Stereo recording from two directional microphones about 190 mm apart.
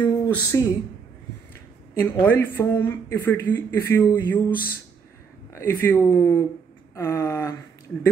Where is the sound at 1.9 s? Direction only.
10° left (ahead or behind).